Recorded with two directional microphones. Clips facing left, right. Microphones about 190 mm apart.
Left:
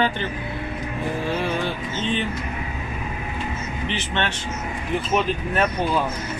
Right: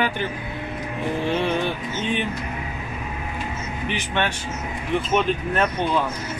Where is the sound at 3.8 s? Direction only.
10° right (ahead or behind).